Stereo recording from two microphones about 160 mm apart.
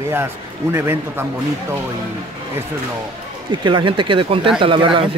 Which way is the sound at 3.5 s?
30° right (ahead or behind).